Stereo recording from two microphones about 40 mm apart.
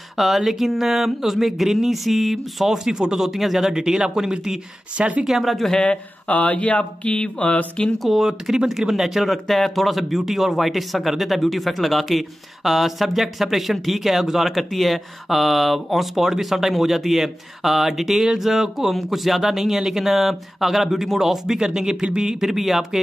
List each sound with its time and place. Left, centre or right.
0.2 s speech: centre
4.9 s speech: right
5.2 s speech: centre
5.7 s a sound: left
6.2 s speech: left
6.8 s a sound: left
8.0 s speech: centre